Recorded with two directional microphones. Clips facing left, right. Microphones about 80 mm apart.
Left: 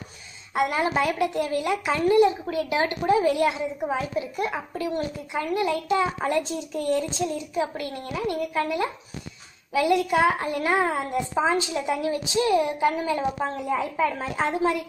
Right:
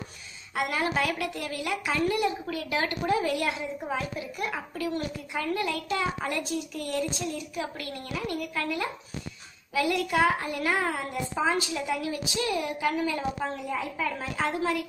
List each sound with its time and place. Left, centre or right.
0.6 s a woman's voice: left